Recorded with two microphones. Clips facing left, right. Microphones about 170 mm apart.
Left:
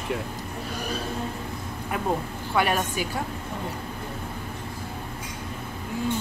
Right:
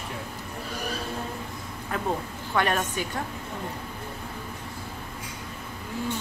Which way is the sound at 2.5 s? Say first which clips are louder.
Left 1 dB; 10° left (ahead or behind).